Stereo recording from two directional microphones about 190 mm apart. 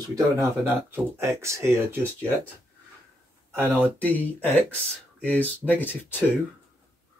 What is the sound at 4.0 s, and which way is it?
Speech, 10° left (ahead or behind).